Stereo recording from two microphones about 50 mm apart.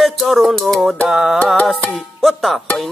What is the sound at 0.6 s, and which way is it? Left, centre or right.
Speech, centre.